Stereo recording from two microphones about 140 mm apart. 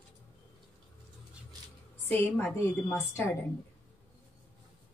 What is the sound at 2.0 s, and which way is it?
A woman's voice, 15° left (ahead or behind).